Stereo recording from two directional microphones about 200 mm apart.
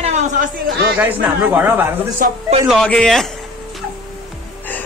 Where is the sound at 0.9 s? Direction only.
10° right (ahead or behind).